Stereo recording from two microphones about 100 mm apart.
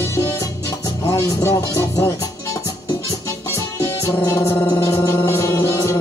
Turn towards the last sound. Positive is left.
turn(degrees=30)  # may be behind; listen again after turning